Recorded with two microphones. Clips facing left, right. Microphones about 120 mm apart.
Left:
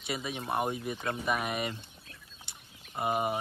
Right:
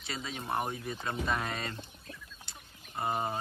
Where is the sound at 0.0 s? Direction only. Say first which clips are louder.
Left 4 dB; 20° left (ahead or behind).